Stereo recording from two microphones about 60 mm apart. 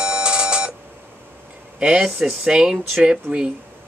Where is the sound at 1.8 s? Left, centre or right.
Centre.